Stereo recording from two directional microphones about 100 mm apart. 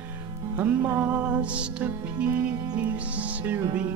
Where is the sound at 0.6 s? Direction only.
15° right (ahead or behind).